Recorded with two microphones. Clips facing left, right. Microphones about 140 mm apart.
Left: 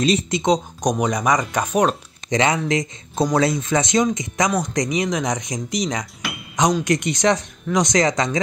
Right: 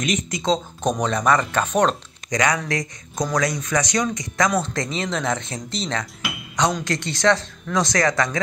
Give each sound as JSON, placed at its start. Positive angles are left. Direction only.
{"t": 0.0, "sound": "speech", "side_deg": 30}
{"t": 2.2, "sound": "speech", "side_deg": 25}